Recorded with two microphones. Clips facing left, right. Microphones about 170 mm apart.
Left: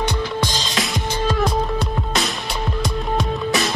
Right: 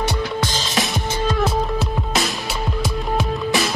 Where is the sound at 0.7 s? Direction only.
25° right (ahead or behind).